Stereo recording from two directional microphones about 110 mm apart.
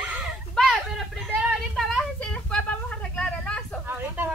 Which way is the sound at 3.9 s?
15° right (ahead or behind).